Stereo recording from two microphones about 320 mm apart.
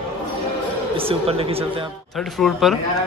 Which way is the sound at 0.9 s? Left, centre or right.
Centre.